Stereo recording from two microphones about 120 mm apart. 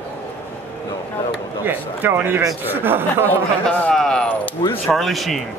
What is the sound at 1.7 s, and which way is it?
Speech, 15° right (ahead or behind).